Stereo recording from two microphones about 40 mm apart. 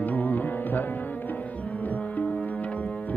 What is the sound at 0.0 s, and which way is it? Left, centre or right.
Music, left.